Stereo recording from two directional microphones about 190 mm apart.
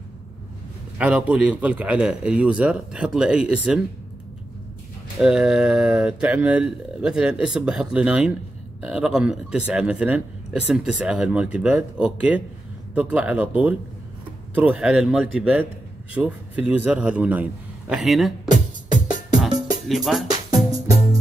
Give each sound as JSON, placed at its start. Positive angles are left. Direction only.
{"t": 0.9, "sound": "speech", "side_deg": -5}
{"t": 5.2, "sound": "a man's voice", "side_deg": -5}
{"t": 14.5, "sound": "a man's voice", "side_deg": -5}
{"t": 18.5, "sound": "music", "side_deg": -40}
{"t": 19.9, "sound": "music", "side_deg": 0}